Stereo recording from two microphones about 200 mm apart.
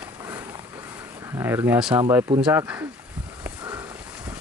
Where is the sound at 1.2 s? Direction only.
15° right (ahead or behind).